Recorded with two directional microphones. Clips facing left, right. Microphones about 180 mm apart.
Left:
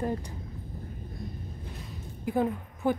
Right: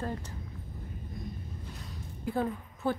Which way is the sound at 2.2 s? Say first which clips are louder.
Left 4 dB; 15° left (ahead or behind).